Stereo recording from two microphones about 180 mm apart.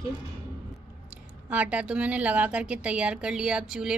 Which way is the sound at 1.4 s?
10° right (ahead or behind).